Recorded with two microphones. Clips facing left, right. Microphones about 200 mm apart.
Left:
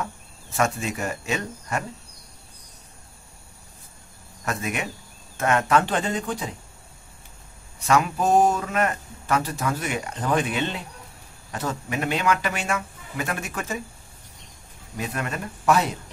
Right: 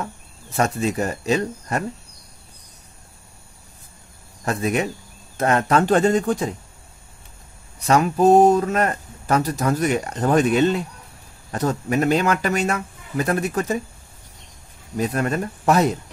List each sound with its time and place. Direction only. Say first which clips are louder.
0.6 s speech: right 4 dB; 35° right (ahead or behind)
4.5 s speech: right 7 dB; 35° right (ahead or behind)
7.8 s speech: right 5 dB; 35° right (ahead or behind)
15.0 s speech: right 8 dB; 40° right (ahead or behind)